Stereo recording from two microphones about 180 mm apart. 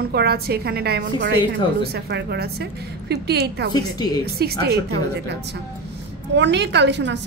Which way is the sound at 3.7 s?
20° left (ahead or behind).